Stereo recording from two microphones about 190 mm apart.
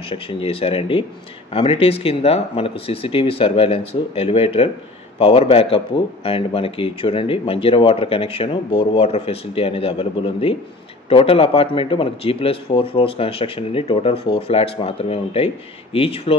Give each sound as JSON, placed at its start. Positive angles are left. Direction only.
{"t": 0.1, "sound": "a man's voice", "side_deg": 30}